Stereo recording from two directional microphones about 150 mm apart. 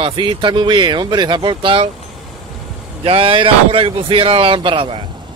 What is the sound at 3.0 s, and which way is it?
Speech, 40° right (ahead or behind).